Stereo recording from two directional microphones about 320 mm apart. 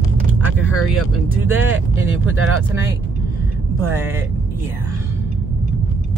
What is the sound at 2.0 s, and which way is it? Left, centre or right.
Speech, right.